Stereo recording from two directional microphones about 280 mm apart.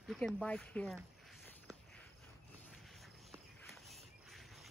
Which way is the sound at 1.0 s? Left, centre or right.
Centre.